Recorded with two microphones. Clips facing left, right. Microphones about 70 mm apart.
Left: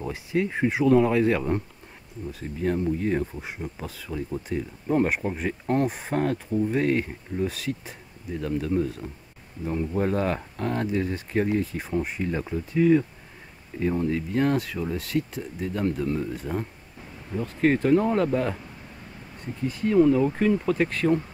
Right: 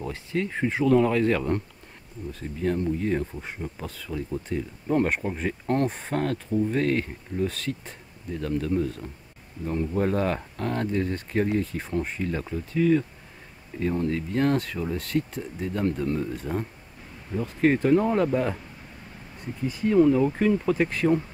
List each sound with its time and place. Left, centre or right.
0.0 s speech: centre
2.6 s speech: centre
19.6 s speech: centre